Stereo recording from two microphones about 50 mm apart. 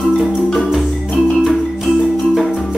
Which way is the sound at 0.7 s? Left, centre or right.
Centre.